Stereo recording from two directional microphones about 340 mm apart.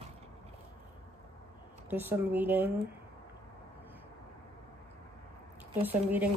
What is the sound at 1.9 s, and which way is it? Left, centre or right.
Speech, centre.